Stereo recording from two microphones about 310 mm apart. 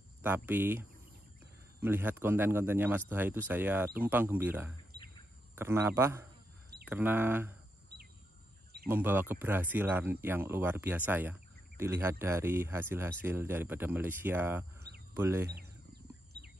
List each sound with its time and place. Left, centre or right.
0.2 s speech: centre
7.9 s bird: right
8.8 s speech: centre
15.5 s bird: right